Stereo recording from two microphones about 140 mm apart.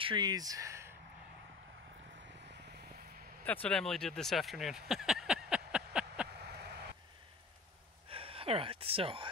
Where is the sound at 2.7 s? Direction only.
90° right.